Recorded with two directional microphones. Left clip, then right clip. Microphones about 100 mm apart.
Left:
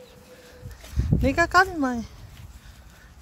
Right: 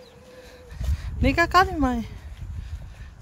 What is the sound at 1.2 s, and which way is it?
Speech, 25° right (ahead or behind).